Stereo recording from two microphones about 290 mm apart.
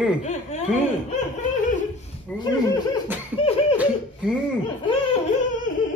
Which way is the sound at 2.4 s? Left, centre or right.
Centre.